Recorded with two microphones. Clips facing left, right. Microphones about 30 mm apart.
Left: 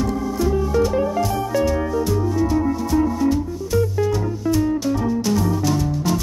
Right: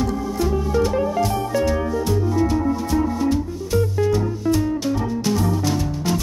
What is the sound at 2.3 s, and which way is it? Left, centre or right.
Music, centre.